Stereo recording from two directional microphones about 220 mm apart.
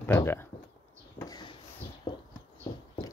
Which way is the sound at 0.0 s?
10° left (ahead or behind).